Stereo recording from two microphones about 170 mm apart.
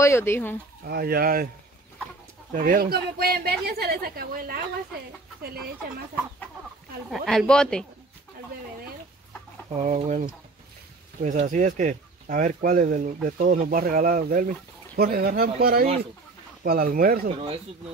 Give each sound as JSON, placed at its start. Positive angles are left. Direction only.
{"t": 0.0, "sound": "speech", "side_deg": 15}
{"t": 0.8, "sound": "a woman's voice", "side_deg": -65}
{"t": 2.5, "sound": "a woman's voice", "side_deg": -55}
{"t": 7.2, "sound": "speech", "side_deg": 5}
{"t": 9.8, "sound": "a woman's voice", "side_deg": -45}